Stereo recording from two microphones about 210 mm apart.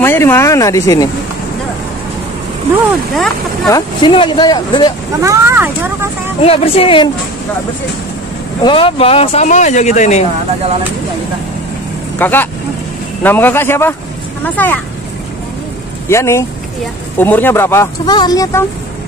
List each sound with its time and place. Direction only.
0.0 s speech: 10° left (ahead or behind)
3.6 s speech: 20° left (ahead or behind)
5.2 s speech: 15° right (ahead or behind)
6.4 s speech: 30° left (ahead or behind)
8.6 s speech: 25° left (ahead or behind)
12.2 s speech: 10° left (ahead or behind)
16.1 s speech: 15° left (ahead or behind)